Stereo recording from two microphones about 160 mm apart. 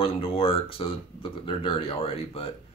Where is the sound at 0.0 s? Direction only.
35° left (ahead or behind).